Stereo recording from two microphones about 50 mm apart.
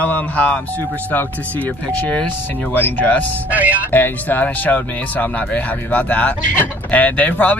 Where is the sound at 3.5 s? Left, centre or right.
Right.